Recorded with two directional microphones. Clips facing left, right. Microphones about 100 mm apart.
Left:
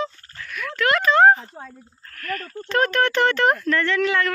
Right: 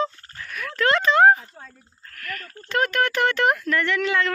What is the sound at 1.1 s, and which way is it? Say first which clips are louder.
Speech: left 1 dB; 10° right (ahead or behind).